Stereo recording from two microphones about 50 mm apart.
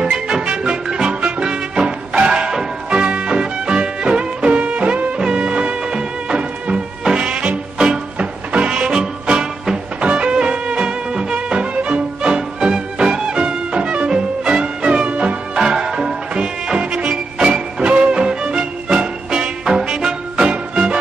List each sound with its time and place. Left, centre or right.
0.0 s music: centre